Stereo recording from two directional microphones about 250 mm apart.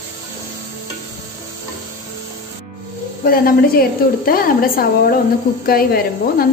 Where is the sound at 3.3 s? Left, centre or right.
Left.